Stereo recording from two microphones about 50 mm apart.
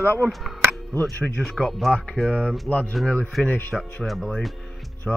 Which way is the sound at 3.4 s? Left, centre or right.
Centre.